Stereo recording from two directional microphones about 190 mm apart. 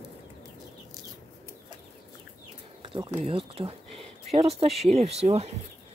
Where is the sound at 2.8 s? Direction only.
30° right (ahead or behind).